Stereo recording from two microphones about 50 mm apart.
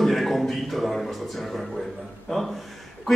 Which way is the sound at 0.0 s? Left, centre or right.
Centre.